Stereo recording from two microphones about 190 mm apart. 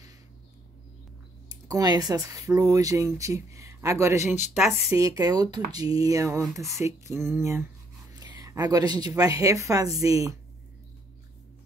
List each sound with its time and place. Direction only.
1.5 s speech: 20° right (ahead or behind)